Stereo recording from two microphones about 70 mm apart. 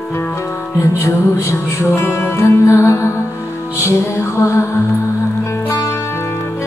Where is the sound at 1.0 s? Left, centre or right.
Left.